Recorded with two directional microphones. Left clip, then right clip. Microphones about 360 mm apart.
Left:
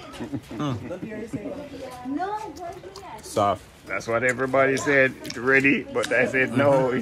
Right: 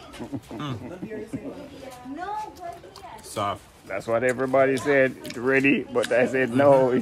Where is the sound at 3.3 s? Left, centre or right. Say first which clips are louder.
Left 6 dB; centre.